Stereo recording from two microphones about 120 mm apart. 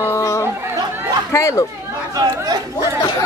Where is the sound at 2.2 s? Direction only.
30° right (ahead or behind).